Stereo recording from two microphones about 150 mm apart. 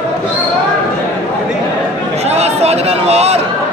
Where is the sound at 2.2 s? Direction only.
45° right (ahead or behind).